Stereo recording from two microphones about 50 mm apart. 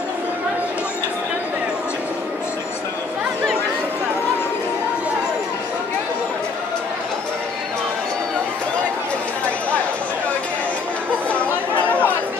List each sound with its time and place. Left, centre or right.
11.8 s chatter: left